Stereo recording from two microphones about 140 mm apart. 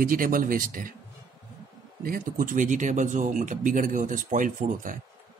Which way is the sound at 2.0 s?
85° right.